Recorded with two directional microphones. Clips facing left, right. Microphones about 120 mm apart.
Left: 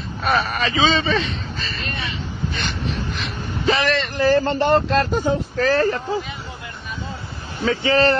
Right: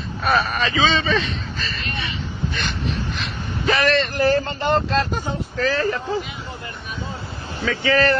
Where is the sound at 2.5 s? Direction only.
30° left (ahead or behind).